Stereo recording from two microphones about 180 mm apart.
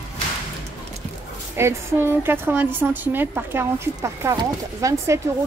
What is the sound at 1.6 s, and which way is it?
A woman's voice, 15° right (ahead or behind).